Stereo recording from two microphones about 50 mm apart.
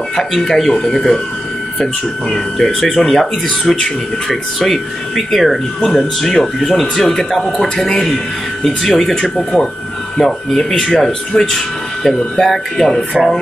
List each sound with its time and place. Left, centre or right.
0.1 s speech: centre
2.3 s speech: centre
7.4 s speech: left
7.7 s speech: centre